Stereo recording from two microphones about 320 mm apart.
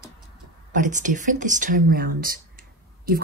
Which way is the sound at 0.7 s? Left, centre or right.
Right.